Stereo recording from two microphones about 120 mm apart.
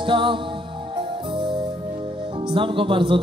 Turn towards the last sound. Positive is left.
turn(degrees=-45)  # may be behind; listen again after turning